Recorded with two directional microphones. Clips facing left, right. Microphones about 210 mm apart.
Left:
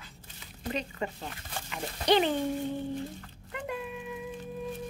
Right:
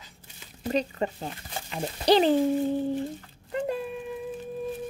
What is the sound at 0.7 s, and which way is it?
Speech, 35° right (ahead or behind).